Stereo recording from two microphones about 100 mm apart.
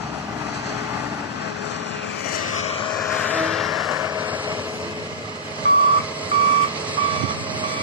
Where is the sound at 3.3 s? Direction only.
5° left (ahead or behind).